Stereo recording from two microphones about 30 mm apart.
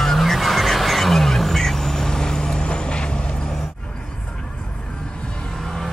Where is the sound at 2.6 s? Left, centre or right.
Left.